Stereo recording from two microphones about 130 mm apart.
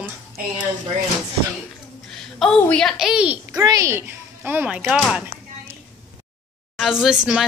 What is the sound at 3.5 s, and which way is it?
Speech, 25° right (ahead or behind).